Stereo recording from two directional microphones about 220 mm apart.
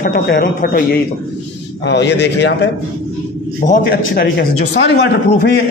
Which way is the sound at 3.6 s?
40° left (ahead or behind).